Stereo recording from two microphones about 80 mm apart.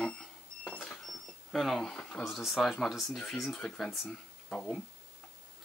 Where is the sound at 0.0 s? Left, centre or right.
Centre.